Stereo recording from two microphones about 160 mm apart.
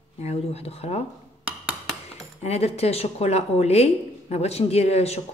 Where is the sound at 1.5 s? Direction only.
5° right (ahead or behind).